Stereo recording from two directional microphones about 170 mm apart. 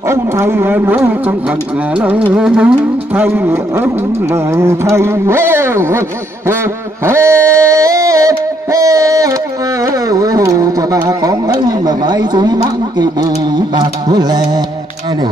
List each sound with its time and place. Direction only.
0.1 s speech: 15° right (ahead or behind)
2.3 s music: 5° right (ahead or behind)
3.2 s speech: 15° right (ahead or behind)
7.1 s a sound: 15° right (ahead or behind)
10.0 s speech: 20° right (ahead or behind)
13.7 s carnatic music: 25° right (ahead or behind)